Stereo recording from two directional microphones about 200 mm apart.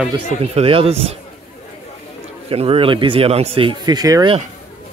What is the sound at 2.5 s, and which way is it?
Speech, 30° right (ahead or behind).